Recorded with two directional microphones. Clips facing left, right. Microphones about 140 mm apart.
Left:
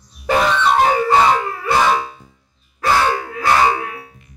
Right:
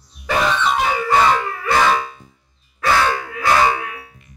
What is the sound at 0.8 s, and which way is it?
Dog, 40° left (ahead or behind).